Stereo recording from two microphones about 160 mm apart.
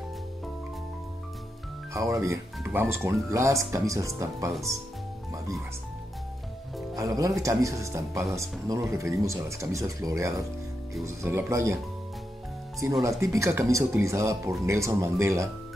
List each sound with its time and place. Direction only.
2.0 s speech: 20° right (ahead or behind)
7.0 s speech: 20° right (ahead or behind)
13.2 s speech: 20° right (ahead or behind)